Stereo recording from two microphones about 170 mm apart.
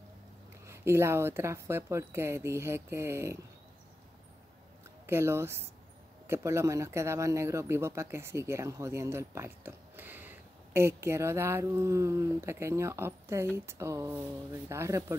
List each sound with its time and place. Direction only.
0.7 s speech: 15° right (ahead or behind)
5.0 s speech: 15° right (ahead or behind)